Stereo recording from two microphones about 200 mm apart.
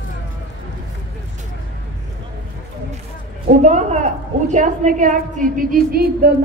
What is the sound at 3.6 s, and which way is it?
A woman's voice, 35° right (ahead or behind).